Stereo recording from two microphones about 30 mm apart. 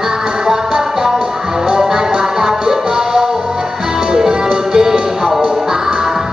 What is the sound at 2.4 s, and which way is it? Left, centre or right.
Music, centre.